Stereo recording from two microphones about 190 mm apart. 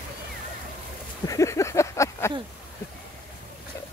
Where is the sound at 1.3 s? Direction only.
15° left (ahead or behind).